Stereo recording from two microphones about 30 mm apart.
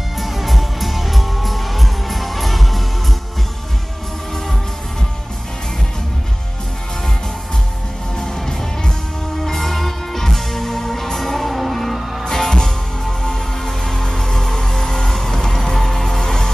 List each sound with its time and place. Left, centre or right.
0.2 s music: centre
8.2 s music: centre
9.4 s music: centre
12.3 s music: centre